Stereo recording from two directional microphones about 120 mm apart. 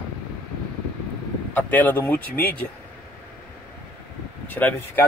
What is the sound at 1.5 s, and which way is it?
Speech, 15° left (ahead or behind).